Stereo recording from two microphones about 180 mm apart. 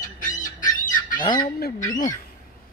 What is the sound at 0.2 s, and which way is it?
Fowl, 45° left (ahead or behind).